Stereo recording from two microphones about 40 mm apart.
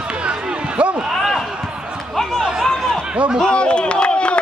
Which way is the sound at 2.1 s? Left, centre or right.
Centre.